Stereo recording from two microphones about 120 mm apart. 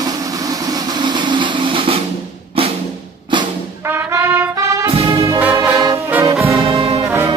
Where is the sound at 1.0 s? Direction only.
40° right (ahead or behind).